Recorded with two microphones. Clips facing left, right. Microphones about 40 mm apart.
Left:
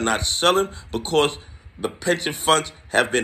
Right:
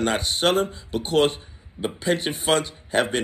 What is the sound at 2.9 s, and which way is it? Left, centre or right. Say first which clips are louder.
Speech: left 3 dB; left.